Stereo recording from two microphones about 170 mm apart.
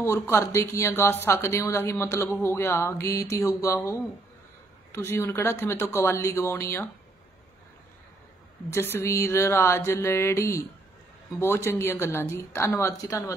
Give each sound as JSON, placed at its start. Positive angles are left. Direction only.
{"t": 0.0, "sound": "speech", "side_deg": 15}
{"t": 8.7, "sound": "speech", "side_deg": 15}